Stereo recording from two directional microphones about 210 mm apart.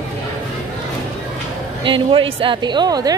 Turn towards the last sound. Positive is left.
turn(degrees=-20)  # may be behind; listen again after turning